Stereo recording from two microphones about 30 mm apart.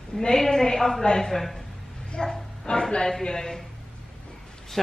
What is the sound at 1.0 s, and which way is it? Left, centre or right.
Speech, left.